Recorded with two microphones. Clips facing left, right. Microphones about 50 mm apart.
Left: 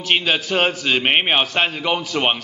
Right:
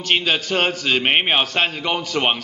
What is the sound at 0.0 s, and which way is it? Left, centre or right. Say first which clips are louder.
A man's voice: left 1 dB; centre.